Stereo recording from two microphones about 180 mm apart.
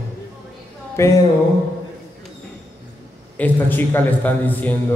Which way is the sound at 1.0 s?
15° left (ahead or behind).